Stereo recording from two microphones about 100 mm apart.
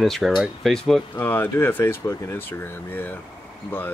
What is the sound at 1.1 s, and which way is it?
Speech, 20° left (ahead or behind).